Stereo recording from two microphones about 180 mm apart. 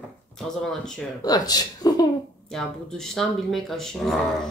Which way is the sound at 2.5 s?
5° left (ahead or behind).